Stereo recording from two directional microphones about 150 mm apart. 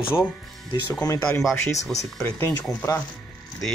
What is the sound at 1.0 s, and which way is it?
Speech, 20° left (ahead or behind).